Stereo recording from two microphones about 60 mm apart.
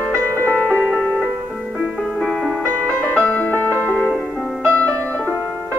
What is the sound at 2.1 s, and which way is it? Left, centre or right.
Music, centre.